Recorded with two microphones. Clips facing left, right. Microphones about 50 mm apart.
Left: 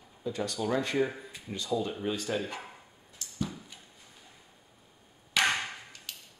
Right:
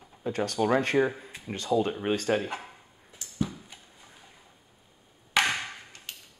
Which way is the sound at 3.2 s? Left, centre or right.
Right.